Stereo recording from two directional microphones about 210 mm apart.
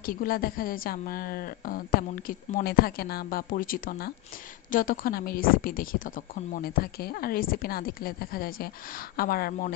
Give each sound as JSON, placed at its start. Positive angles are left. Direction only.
{"t": 0.0, "sound": "a woman's voice", "side_deg": 45}